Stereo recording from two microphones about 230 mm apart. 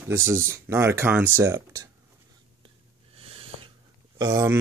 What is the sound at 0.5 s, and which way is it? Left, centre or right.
Speech, centre.